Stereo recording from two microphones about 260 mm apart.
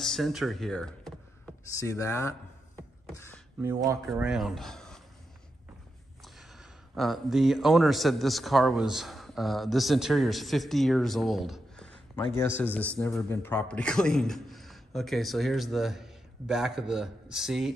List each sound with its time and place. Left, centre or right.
0.0 s a sound: centre
1.8 s speech: centre
3.6 s speech: centre
7.0 s a man's voice: centre